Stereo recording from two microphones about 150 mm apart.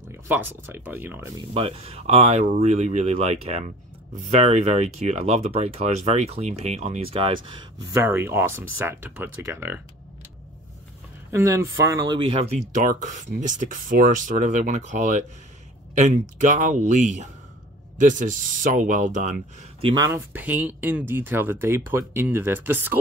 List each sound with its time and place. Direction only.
0.3 s speech: 15° right (ahead or behind)
1.5 s speech: 40° right (ahead or behind)
8.0 s speech: 15° right (ahead or behind)
11.3 s speech: 20° right (ahead or behind); by 19.4 s 55° right (ahead or behind)
19.8 s speech: 35° right (ahead or behind)
20.1 s speech: 10° right (ahead or behind)